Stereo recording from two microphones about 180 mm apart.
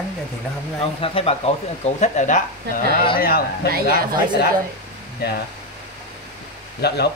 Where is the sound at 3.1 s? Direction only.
55° left (ahead or behind).